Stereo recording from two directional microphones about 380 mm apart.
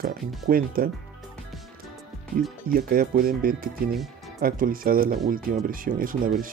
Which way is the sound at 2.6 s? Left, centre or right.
Right.